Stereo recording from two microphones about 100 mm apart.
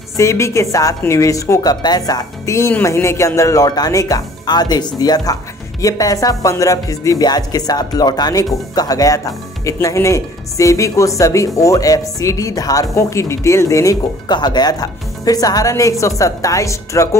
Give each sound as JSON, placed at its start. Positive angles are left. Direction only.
{"t": 0.2, "sound": "speech", "side_deg": 30}
{"t": 14.2, "sound": "speech", "side_deg": 45}